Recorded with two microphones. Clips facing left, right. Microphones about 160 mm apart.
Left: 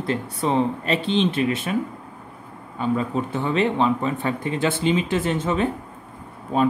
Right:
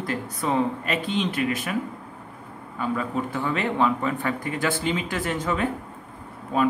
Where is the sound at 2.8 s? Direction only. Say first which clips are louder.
Left 3 dB; 25° left (ahead or behind).